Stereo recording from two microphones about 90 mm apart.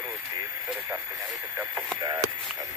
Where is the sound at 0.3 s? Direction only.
35° right (ahead or behind).